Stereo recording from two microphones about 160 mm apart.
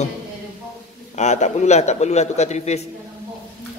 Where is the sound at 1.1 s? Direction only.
45° left (ahead or behind).